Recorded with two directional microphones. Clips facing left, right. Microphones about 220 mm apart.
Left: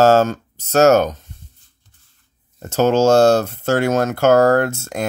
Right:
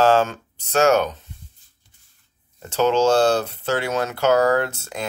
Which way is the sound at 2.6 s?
45° left (ahead or behind).